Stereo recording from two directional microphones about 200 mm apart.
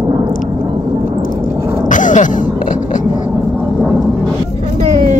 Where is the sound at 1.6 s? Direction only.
15° right (ahead or behind).